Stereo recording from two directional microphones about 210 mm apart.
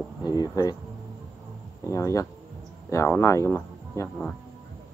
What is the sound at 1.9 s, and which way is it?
Speech, 15° left (ahead or behind).